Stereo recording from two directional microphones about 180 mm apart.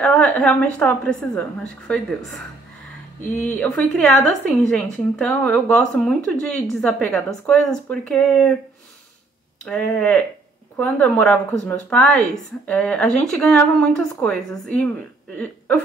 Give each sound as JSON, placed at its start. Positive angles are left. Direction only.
{"t": 0.0, "sound": "speech", "side_deg": 5}
{"t": 3.3, "sound": "speech", "side_deg": 10}
{"t": 9.7, "sound": "speech", "side_deg": 5}